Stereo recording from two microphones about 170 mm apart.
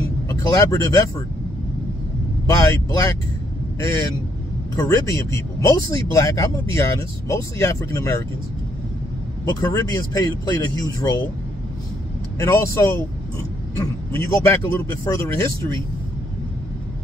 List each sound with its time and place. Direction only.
0.3 s speech: 20° left (ahead or behind)
2.4 s speech: 20° left (ahead or behind)
4.8 s speech: 20° left (ahead or behind)
9.6 s speech: 15° left (ahead or behind)
12.4 s speech: 15° left (ahead or behind)